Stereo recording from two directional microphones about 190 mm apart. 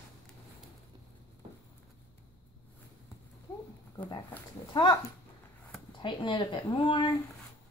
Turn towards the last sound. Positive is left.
turn(degrees=25)  # may be behind; listen again after turning